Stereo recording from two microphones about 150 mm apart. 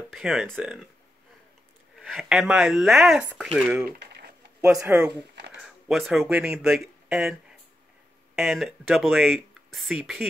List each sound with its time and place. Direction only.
0.1 s speech: 5° right (ahead or behind)
2.0 s speech: centre (ahead or behind)
4.0 s a sound: 90° right
4.6 s speech: 5° right (ahead or behind)
8.4 s speech: centre (ahead or behind)